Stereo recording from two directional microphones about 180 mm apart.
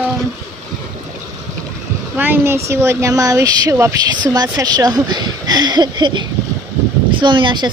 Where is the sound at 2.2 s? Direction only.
10° right (ahead or behind).